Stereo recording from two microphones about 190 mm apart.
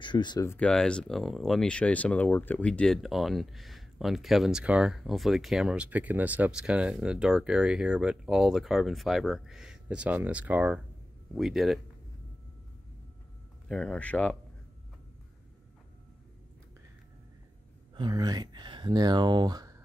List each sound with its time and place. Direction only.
0.0 s speech: 25° left (ahead or behind); by 11.8 s centre (ahead or behind)
13.7 s speech: 5° left (ahead or behind)
17.9 s speech: 20° right (ahead or behind)